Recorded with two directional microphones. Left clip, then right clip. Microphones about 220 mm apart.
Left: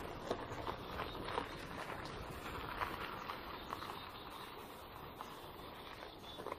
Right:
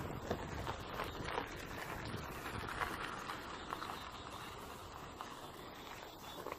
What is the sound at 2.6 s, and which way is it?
Vehicle, 50° right (ahead or behind).